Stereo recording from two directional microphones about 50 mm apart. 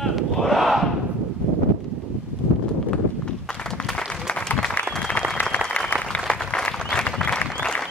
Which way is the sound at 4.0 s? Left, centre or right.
Centre.